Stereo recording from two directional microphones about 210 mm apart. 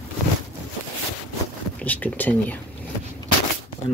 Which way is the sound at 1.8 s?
10° left (ahead or behind).